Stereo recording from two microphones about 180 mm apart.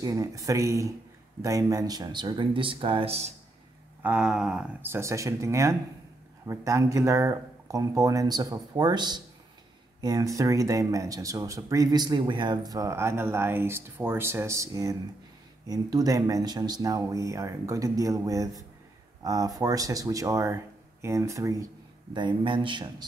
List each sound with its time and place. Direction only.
0.0 s speech: 20° right (ahead or behind)
4.0 s speech: 5° right (ahead or behind); by 23.0 s 25° right (ahead or behind)